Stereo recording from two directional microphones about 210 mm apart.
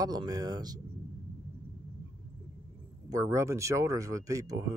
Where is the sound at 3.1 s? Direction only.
15° right (ahead or behind).